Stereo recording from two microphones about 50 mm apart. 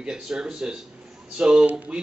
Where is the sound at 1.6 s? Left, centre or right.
Right.